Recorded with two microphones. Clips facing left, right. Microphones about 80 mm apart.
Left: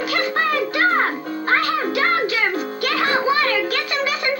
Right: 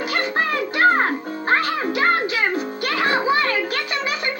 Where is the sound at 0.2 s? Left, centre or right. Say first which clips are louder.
Left 2 dB; right.